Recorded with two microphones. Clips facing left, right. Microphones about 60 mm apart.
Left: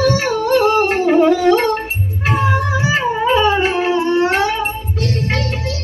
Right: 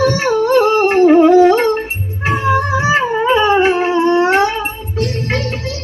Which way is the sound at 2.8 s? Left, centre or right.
Right.